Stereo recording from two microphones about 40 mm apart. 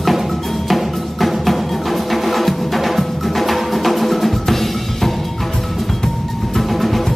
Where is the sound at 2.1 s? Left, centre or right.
Centre.